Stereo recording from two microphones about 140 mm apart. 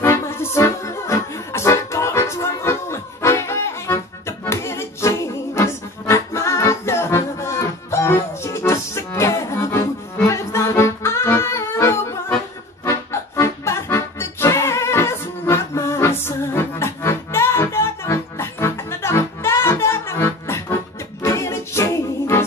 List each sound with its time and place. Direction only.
0.0 s music: 20° left (ahead or behind)